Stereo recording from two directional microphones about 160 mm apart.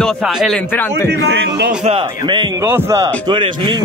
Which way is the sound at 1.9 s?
30° right (ahead or behind).